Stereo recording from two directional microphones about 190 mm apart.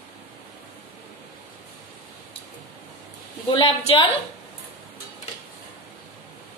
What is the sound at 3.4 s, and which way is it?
Speech, 25° left (ahead or behind).